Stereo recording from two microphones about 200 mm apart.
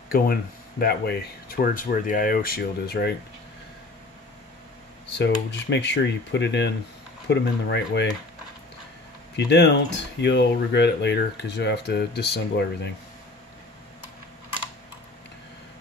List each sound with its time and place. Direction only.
0.1 s speech: 50° left (ahead or behind)
5.1 s speech: 60° left (ahead or behind)
9.4 s speech: 60° left (ahead or behind)